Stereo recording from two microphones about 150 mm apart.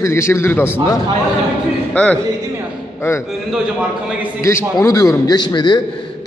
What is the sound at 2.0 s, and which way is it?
A man's voice, 10° left (ahead or behind).